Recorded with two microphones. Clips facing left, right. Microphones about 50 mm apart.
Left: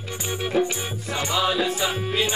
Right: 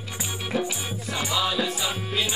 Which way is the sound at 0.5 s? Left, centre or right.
Centre.